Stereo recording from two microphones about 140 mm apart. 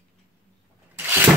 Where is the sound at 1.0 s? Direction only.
15° right (ahead or behind).